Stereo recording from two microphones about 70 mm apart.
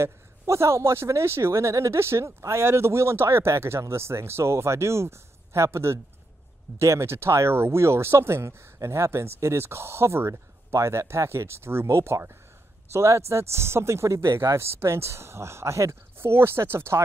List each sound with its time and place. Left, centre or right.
0.0 s speech: right